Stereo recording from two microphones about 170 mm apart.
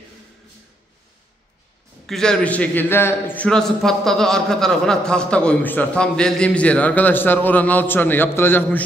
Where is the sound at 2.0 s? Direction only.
5° left (ahead or behind).